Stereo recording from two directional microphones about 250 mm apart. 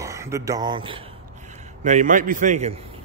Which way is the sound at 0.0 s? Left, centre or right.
Centre.